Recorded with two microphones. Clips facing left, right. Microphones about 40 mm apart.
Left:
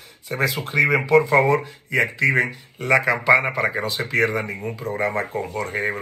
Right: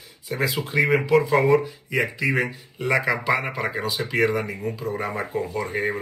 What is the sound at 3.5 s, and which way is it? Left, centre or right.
Speech, left.